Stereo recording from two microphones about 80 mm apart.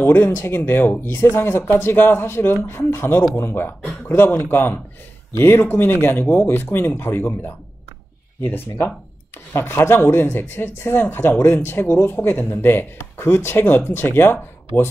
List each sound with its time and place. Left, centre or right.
0.0 s speech: left